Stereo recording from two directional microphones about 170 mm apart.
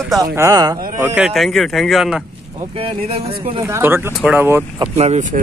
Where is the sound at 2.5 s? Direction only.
35° right (ahead or behind).